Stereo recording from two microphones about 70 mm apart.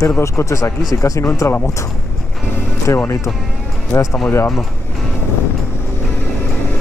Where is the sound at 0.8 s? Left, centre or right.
Left.